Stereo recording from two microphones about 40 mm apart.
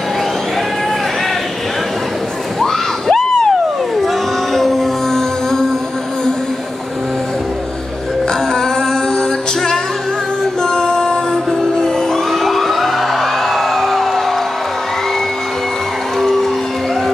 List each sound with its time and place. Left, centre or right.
2.6 s crowd: centre
4.6 s music: centre
10.6 s music: centre
11.8 s a sound: centre
16.2 s music: centre